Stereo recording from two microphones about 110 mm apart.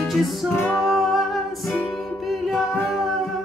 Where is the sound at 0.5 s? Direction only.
25° left (ahead or behind).